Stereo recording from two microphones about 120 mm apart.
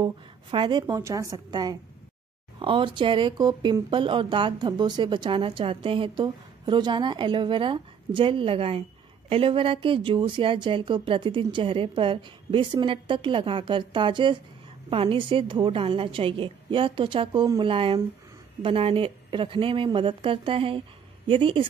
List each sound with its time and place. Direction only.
0.0 s a woman's voice: 45° right (ahead or behind)